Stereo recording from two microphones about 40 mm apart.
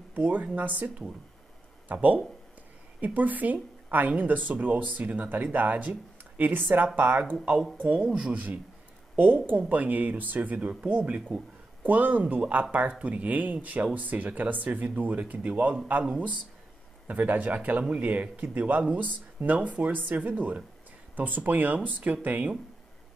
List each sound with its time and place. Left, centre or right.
0.1 s a woman's voice: right
9.6 s speech: right
11.1 s a man's voice: right
17.1 s speech: right